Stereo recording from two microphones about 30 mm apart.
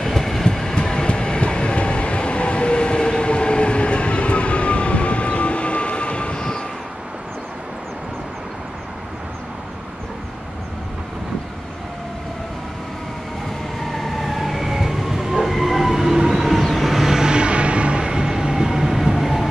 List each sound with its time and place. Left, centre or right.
0.0 s train: centre; by 6.6 s left
13.9 s vehicle: centre
15.5 s train: centre
16.2 s a sound: centre
16.6 s vehicle: centre
17.2 s music: right
18.0 s train: right
18.9 s train: centre